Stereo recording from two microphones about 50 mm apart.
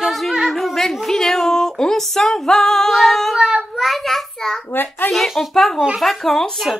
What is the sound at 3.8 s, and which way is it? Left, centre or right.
Speech, centre.